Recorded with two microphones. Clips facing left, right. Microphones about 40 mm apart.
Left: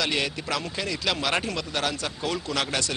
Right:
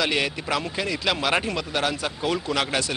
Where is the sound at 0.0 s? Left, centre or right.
Centre.